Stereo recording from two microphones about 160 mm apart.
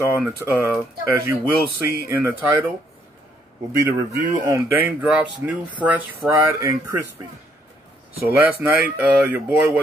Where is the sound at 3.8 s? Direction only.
15° right (ahead or behind).